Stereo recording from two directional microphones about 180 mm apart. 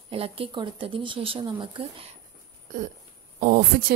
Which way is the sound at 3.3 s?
50° right (ahead or behind).